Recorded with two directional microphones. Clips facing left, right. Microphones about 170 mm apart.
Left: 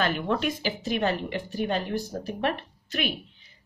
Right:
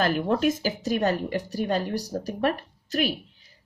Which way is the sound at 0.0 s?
40° right (ahead or behind).